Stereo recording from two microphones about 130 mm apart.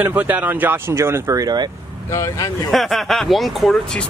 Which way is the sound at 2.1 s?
25° left (ahead or behind).